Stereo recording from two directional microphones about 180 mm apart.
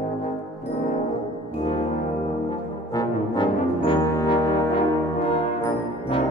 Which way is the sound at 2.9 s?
20° left (ahead or behind).